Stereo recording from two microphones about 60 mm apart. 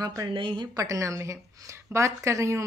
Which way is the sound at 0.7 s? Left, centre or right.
Right.